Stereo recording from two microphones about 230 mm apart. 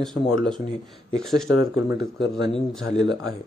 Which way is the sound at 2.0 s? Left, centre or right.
Left.